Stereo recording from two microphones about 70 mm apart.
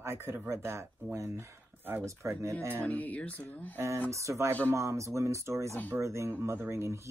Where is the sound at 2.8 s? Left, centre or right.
Left.